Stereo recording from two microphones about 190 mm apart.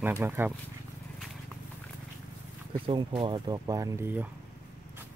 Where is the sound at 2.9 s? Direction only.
25° right (ahead or behind).